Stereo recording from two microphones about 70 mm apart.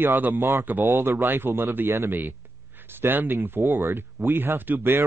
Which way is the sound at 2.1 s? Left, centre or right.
Right.